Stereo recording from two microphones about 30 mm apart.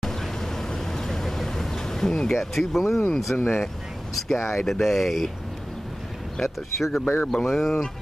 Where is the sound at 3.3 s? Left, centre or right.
Left.